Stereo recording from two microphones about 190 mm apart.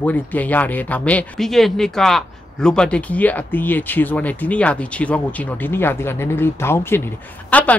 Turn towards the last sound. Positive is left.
turn(degrees=5)  # may be behind; listen again after turning